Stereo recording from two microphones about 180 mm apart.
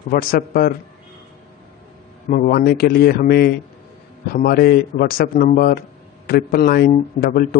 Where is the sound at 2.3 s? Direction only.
55° left (ahead or behind).